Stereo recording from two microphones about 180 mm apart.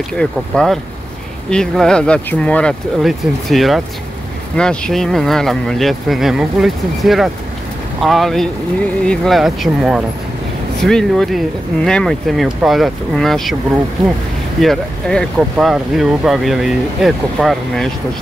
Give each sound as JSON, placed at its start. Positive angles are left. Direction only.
{"t": 0.2, "sound": "speech", "side_deg": 5}
{"t": 14.6, "sound": "speech", "side_deg": 5}